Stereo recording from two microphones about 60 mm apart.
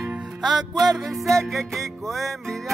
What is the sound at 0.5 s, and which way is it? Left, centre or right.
Music, centre.